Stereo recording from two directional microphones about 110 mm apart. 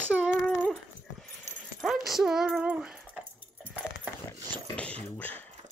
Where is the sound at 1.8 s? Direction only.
Centre (ahead or behind).